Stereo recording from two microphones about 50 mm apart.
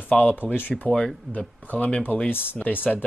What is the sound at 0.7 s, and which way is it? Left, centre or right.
Speech, left.